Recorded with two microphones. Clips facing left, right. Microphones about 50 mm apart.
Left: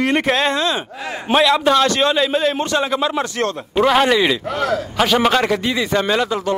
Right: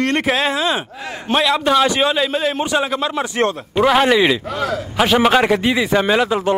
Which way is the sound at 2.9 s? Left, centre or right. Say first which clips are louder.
Even; centre.